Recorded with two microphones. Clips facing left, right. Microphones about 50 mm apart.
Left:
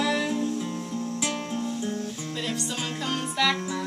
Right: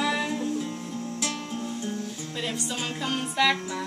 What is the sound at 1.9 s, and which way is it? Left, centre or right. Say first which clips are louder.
Music: left 2 dB; centre.